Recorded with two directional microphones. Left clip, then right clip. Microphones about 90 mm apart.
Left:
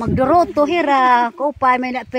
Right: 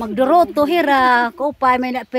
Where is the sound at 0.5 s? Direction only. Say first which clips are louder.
Even; 25° right (ahead or behind).